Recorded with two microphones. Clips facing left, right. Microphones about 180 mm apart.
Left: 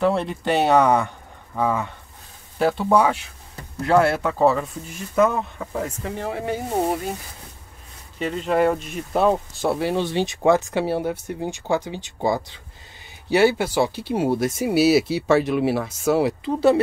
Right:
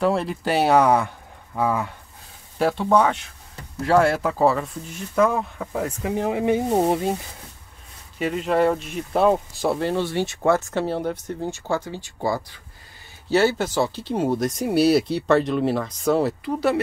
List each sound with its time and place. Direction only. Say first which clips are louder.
0.0 s speech: left 1 dB; centre (ahead or behind); by 7.2 s 20° right (ahead or behind)
8.2 s speech: even; 5° right (ahead or behind)
16.4 s speech: left 4 dB; 25° left (ahead or behind)